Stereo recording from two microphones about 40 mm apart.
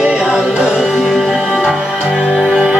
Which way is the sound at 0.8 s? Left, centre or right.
Centre.